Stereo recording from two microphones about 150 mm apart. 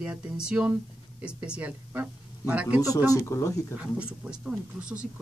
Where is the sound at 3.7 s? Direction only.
5° right (ahead or behind).